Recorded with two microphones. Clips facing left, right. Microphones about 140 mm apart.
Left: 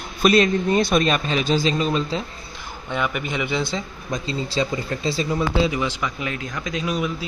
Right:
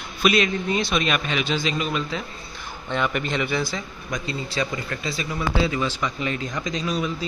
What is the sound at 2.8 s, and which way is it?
Speech, 10° left (ahead or behind).